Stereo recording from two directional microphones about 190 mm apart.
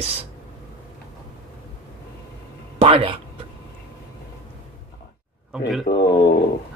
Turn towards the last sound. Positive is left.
turn(degrees=60)  # may be behind; listen again after turning